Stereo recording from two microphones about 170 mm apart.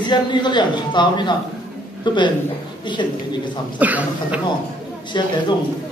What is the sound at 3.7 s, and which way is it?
Speech, 10° right (ahead or behind).